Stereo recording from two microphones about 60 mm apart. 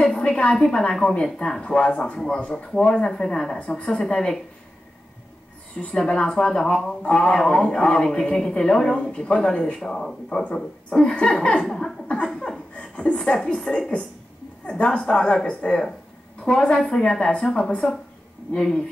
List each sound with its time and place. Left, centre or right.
0.0 s a woman's voice: centre
3.1 s a woman's voice: centre
3.5 s a woman's voice: centre
5.8 s a woman's voice: centre
12.7 s chuckle: centre
13.7 s a woman's voice: centre